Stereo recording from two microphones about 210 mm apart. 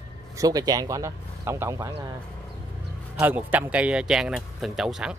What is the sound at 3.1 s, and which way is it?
Speech, 10° right (ahead or behind).